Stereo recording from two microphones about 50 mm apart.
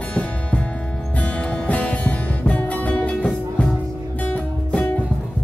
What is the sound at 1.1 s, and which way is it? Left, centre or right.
Music, left.